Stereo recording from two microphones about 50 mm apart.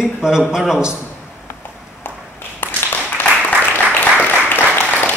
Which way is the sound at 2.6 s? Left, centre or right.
Left.